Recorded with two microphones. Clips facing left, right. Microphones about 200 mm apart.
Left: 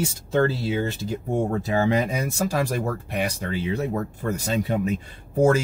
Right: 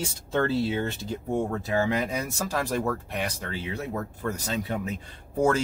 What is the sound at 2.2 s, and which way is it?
Speech, 10° left (ahead or behind).